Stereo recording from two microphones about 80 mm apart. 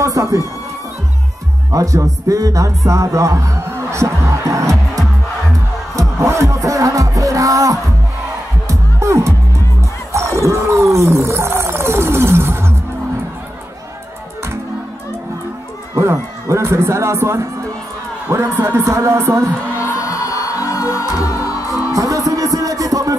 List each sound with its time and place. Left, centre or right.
0.0 s a sound: right
1.7 s speech: right
5.9 s music: right
10.1 s wild animals: right
15.9 s a sound: right
18.3 s speech: right
20.1 s music: left
21.9 s music: right